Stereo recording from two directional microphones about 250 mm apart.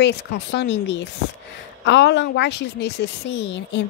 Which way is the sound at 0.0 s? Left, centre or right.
Left.